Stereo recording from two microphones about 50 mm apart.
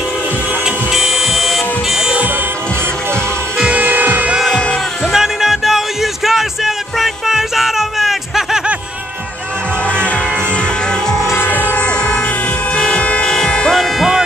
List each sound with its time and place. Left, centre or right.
0.9 s vehicle: centre
3.7 s music: right
5.1 s music: centre
11.3 s music: left
12.7 s toot: centre
13.3 s music: centre
13.7 s music: centre